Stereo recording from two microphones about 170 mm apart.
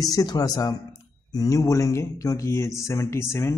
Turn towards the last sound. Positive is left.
turn(degrees=15)  # may be behind; listen again after turning